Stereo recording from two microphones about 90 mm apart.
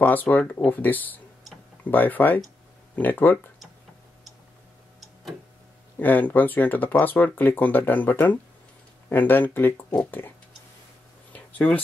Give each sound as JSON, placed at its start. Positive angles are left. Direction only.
{"t": 0.0, "sound": "speech", "side_deg": 20}
{"t": 5.9, "sound": "speech", "side_deg": 20}
{"t": 11.3, "sound": "a sound", "side_deg": 20}